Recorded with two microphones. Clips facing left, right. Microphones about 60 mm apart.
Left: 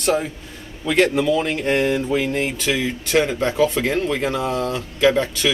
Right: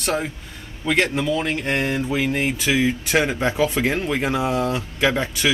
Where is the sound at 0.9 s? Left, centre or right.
Centre.